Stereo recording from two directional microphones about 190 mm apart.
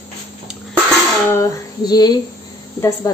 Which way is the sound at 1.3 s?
20° left (ahead or behind).